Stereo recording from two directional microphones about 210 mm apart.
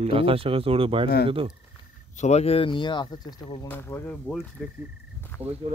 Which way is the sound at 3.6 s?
10° left (ahead or behind).